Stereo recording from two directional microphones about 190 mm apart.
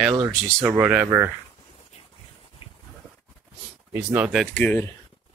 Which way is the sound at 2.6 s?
30° left (ahead or behind).